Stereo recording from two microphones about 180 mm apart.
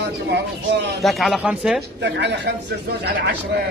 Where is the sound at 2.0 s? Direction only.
75° right (ahead or behind).